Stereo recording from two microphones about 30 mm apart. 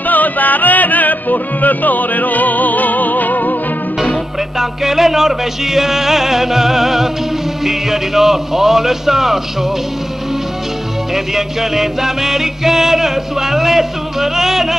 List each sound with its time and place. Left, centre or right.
0.0 s music: left
4.6 s music: centre
11.1 s music: centre